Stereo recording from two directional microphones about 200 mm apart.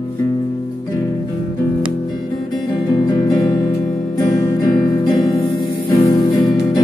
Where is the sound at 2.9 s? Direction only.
20° left (ahead or behind).